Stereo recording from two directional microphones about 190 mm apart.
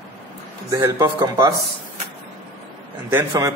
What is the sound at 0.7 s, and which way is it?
Speech, 15° right (ahead or behind).